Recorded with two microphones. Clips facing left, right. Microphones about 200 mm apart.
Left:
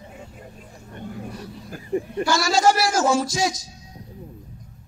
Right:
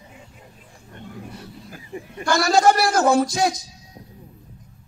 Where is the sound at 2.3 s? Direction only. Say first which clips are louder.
Right 3 dB; 60° right (ahead or behind).